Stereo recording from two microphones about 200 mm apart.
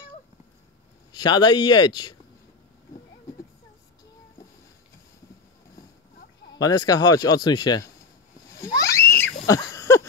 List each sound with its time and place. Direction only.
1.1 s speech: 20° left (ahead or behind)
6.6 s speech: 20° left (ahead or behind)
8.5 s a sound: 15° left (ahead or behind)